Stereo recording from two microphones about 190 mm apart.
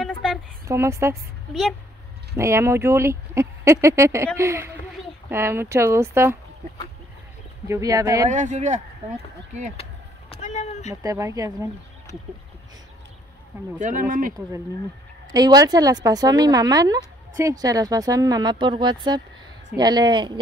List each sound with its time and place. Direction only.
0.0 s a sound: centre (ahead or behind)
0.7 s speech: 15° right (ahead or behind)
1.5 s speech: centre (ahead or behind)
2.3 s speech: 15° right (ahead or behind)
7.6 s speech: 15° right (ahead or behind)
8.3 s speech: 40° right (ahead or behind)
10.3 s a sound: 35° left (ahead or behind)
11.0 s speech: 15° right (ahead or behind)
13.7 s speech: 40° right (ahead or behind)
15.3 s a woman's voice: 20° right (ahead or behind)